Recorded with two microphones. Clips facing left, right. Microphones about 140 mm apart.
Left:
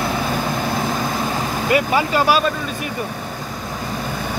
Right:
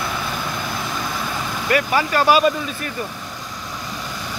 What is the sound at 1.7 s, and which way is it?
Speech, 20° left (ahead or behind).